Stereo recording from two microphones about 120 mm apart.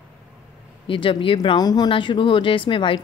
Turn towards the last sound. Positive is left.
turn(degrees=45)  # may be behind; listen again after turning